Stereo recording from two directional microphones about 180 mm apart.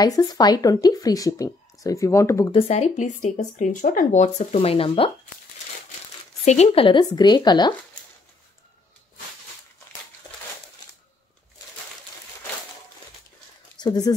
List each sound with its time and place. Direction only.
0.0 s speech: 20° left (ahead or behind)
2.5 s speech: 35° left (ahead or behind)
6.4 s speech: 40° left (ahead or behind)
13.7 s speech: 25° left (ahead or behind)